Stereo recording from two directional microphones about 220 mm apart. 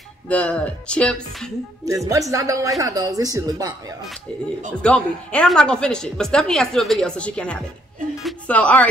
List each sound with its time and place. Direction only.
0.3 s a woman's voice: 5° left (ahead or behind)
1.9 s a woman's voice: 15° right (ahead or behind)
4.8 s a woman's voice: 5° left (ahead or behind)